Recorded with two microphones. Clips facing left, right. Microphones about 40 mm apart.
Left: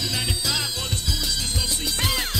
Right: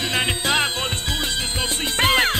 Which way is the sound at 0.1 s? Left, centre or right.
Right.